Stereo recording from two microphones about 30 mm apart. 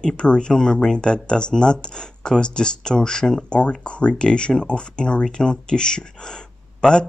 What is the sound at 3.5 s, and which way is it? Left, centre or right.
Speech, left.